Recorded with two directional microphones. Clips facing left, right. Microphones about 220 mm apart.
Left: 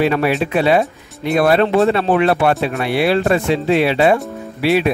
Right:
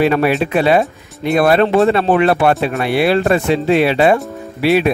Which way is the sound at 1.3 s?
50° right (ahead or behind).